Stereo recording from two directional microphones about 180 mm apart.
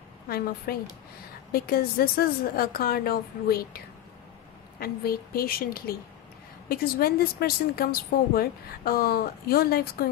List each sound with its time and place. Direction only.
0.7 s a woman's voice: 60° left (ahead or behind)